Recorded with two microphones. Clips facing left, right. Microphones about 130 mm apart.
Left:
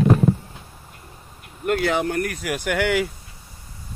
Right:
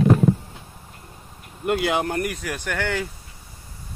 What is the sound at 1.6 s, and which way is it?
Speech, 20° right (ahead or behind).